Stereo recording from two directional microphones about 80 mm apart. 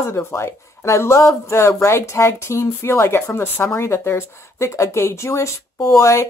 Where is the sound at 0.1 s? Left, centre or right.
Left.